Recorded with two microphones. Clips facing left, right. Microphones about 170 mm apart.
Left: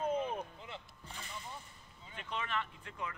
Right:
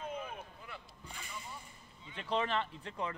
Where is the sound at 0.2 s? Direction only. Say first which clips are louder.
Left 7 dB; 20° left (ahead or behind).